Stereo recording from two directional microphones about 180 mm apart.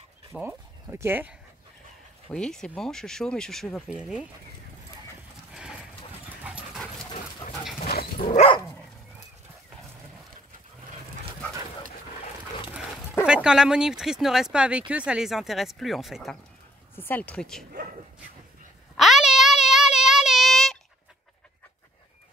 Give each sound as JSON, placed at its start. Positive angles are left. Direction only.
{"t": 0.3, "sound": "speech", "side_deg": -15}
{"t": 2.2, "sound": "speech", "side_deg": 5}
{"t": 5.5, "sound": "clip-clop", "side_deg": -5}
{"t": 6.2, "sound": "dog", "side_deg": -10}
{"t": 7.9, "sound": "dog", "side_deg": 60}
{"t": 8.3, "sound": "dog", "side_deg": 40}
{"t": 13.2, "sound": "speech", "side_deg": -5}
{"t": 16.9, "sound": "speech", "side_deg": 10}
{"t": 18.9, "sound": "child singing", "side_deg": 0}